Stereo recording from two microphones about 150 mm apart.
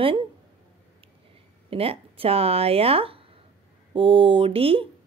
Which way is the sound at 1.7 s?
40° right (ahead or behind).